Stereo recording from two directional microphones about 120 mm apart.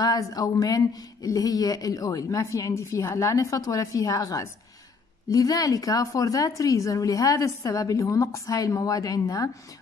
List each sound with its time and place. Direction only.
0.0 s speech: 30° left (ahead or behind)